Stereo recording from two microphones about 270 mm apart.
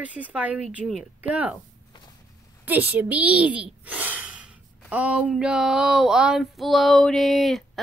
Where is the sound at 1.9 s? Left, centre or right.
Centre.